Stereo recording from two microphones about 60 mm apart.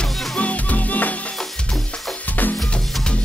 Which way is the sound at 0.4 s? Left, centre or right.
Left.